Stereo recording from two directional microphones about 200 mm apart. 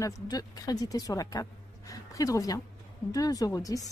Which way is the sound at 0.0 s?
20° left (ahead or behind).